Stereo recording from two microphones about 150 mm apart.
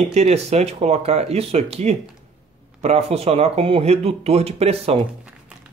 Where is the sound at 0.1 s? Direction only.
45° right (ahead or behind).